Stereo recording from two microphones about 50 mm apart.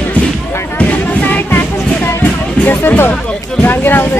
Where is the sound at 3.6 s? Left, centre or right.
Left.